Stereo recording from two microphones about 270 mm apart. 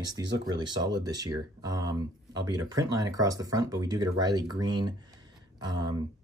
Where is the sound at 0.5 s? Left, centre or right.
Centre.